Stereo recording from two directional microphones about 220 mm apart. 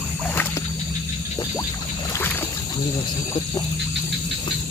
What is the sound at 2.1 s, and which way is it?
Boat, 10° left (ahead or behind).